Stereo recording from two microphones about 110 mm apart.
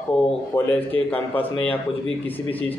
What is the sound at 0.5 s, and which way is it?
Speech, 15° left (ahead or behind).